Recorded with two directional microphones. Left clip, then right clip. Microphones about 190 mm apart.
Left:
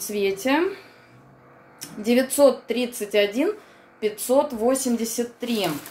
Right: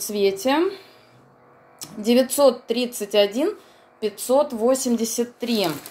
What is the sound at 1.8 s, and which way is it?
Speech, 35° right (ahead or behind).